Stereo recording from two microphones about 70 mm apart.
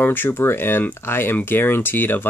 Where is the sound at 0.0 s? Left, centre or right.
Left.